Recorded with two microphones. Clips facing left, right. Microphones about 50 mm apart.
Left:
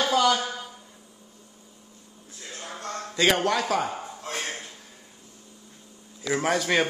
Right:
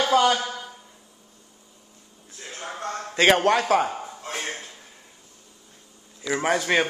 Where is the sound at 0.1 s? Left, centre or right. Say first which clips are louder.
Right 3 dB; right.